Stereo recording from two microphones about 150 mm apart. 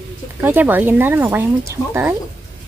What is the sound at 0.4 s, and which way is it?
Speech, 10° right (ahead or behind).